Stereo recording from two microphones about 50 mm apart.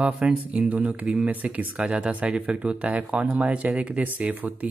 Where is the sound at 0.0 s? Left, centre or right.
Right.